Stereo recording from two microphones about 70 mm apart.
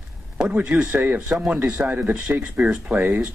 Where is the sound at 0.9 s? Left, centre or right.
Right.